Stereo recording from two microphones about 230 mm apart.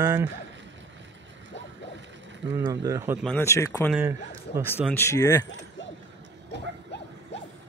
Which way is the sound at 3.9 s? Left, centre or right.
Centre.